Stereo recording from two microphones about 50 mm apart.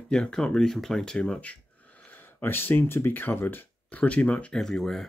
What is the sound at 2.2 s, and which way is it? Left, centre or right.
Speech, left.